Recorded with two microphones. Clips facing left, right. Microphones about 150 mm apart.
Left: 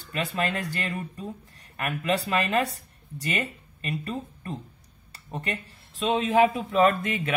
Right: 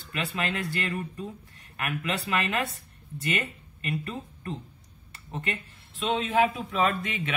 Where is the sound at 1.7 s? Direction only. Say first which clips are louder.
Left 4 dB; 35° left (ahead or behind).